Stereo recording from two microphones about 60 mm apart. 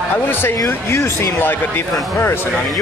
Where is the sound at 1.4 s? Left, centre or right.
Left.